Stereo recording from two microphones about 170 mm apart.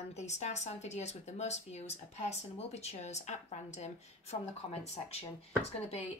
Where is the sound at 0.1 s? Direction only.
40° left (ahead or behind).